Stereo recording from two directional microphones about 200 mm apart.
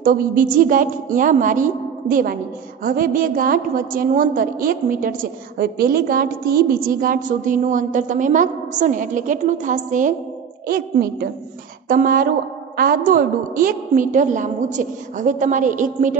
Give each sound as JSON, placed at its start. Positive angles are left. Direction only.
{"t": 0.0, "sound": "a woman's voice", "side_deg": -45}